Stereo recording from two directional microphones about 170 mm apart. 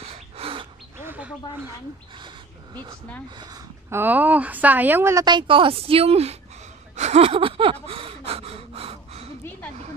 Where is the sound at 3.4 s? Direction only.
15° right (ahead or behind); by 6.3 s 35° right (ahead or behind).